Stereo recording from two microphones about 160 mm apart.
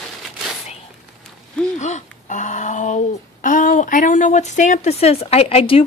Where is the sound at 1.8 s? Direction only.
50° left (ahead or behind).